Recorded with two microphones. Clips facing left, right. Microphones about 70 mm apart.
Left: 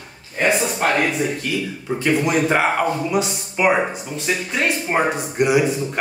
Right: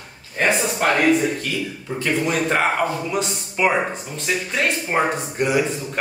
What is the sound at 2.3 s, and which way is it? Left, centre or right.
Speech, centre.